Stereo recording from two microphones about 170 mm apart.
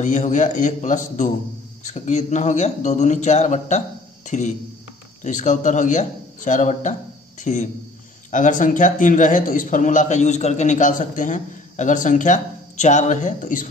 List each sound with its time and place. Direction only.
0.0 s a man's voice: 45° left (ahead or behind)